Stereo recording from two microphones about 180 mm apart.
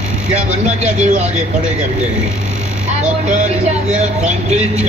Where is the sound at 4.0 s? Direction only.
40° right (ahead or behind).